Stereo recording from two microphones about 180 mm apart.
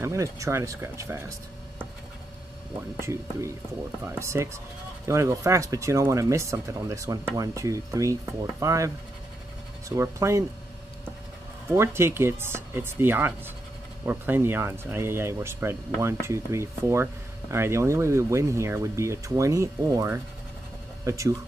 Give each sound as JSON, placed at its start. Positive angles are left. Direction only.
{"t": 0.0, "sound": "speech", "side_deg": -15}
{"t": 3.0, "sound": "speech", "side_deg": -15}
{"t": 11.7, "sound": "speech", "side_deg": -15}